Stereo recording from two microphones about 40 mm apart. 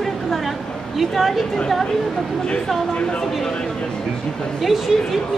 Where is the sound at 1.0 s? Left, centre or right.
Centre.